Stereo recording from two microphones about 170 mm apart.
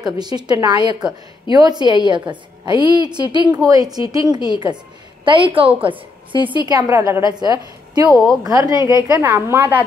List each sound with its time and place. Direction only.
0.0 s a woman's voice: 25° right (ahead or behind)